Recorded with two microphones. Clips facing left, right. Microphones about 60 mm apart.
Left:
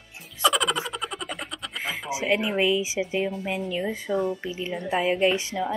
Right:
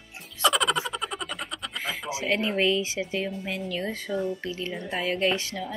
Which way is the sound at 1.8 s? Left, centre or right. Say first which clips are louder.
Left 3 dB; left.